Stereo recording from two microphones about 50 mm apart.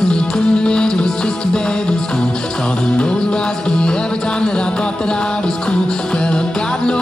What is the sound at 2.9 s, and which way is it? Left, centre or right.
Music, centre.